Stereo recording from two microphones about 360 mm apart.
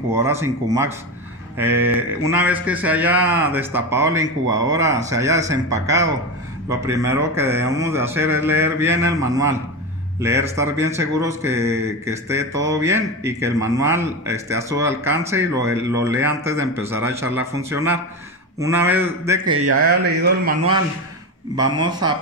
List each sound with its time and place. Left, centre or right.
0.1 s a man's voice: centre
19.5 s a man's voice: right
19.8 s speech: right
21.5 s speech: centre